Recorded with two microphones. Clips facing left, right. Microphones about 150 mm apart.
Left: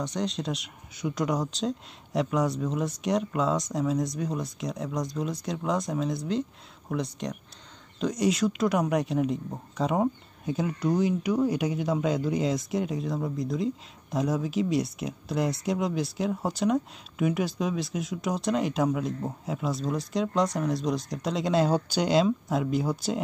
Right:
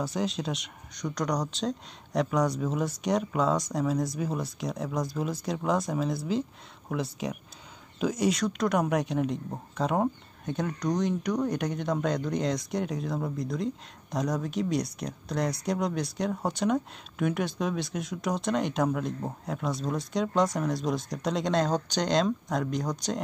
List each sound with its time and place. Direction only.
0.0 s speech: 5° right (ahead or behind)